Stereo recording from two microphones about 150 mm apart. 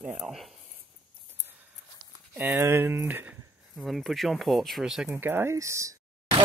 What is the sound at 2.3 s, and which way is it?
Speech, 10° right (ahead or behind).